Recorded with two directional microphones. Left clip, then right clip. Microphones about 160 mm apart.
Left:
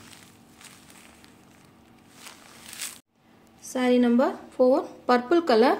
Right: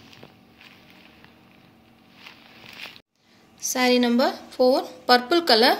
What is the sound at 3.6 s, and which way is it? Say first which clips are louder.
A woman's voice: right 2 dB; 60° left (ahead or behind).